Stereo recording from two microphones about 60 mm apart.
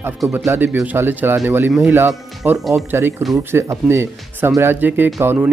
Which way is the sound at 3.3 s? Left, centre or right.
Right.